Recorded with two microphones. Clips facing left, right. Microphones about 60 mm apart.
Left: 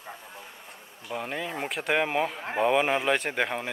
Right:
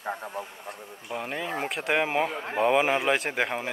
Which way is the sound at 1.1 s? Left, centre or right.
Centre.